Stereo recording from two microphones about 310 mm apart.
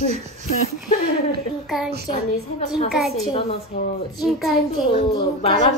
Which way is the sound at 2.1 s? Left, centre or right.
Centre.